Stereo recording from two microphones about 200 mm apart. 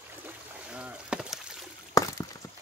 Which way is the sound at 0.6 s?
5° right (ahead or behind).